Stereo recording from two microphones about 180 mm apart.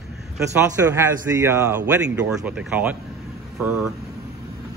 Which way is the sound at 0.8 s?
15° right (ahead or behind).